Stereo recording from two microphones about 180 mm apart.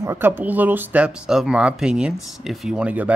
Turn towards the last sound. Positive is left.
turn(degrees=-5)  # may be behind; listen again after turning